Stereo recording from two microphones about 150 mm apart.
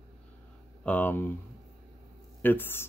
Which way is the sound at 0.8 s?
10° left (ahead or behind).